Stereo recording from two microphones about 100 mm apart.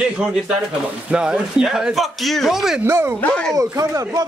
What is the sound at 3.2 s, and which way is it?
Speech, 15° left (ahead or behind).